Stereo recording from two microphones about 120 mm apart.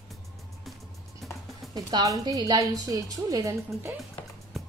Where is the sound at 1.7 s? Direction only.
30° right (ahead or behind).